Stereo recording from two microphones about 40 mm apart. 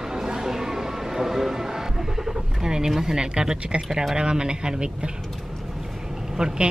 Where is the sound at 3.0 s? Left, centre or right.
Centre.